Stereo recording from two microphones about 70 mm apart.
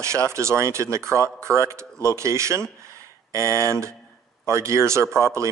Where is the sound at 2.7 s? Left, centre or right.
Right.